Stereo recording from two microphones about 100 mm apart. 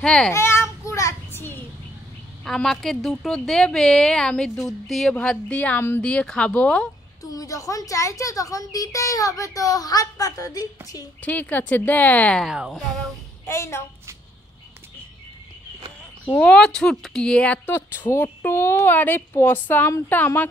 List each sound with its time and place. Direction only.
0.0 s speech: 10° left (ahead or behind)
0.3 s children playing: 25° left (ahead or behind)
2.4 s a woman's voice: 5° left (ahead or behind)
7.2 s speech: 35° left (ahead or behind)
11.1 s speech: 15° left (ahead or behind)
13.5 s speech: 25° left (ahead or behind)
16.3 s speech: 10° left (ahead or behind)
17.6 s speech: 20° left (ahead or behind)